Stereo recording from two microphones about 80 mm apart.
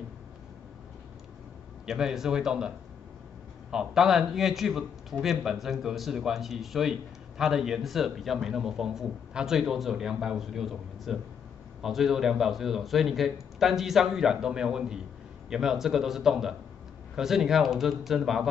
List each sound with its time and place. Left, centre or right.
1.9 s speech: centre
3.7 s speech: centre